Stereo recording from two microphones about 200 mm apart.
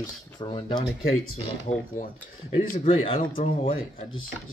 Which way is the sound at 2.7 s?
40° left (ahead or behind).